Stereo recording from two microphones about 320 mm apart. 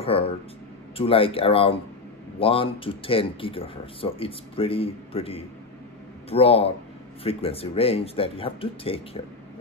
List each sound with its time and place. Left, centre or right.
0.1 s speech: centre